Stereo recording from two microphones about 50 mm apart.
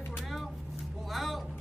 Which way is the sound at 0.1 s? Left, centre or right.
Centre.